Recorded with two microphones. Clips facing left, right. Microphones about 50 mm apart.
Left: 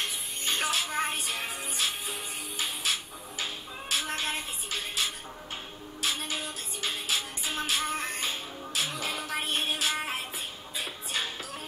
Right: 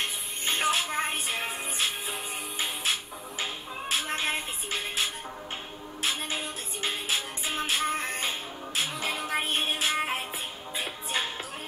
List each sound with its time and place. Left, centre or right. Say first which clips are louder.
0.5 s music: right 3 dB; right
6.0 s music: right 1 dB; right